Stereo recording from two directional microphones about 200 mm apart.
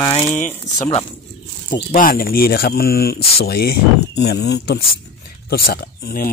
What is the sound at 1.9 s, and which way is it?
Speech, 45° left (ahead or behind).